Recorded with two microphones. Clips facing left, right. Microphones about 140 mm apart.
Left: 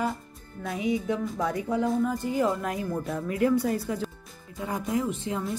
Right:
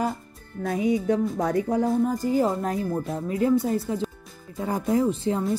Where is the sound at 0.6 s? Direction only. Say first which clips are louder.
Right 4 dB; 45° right (ahead or behind).